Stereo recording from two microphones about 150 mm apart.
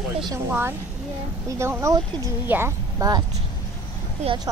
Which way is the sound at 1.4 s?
20° right (ahead or behind).